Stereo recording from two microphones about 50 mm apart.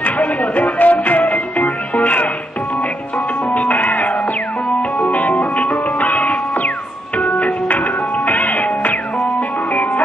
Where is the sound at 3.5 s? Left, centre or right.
Left.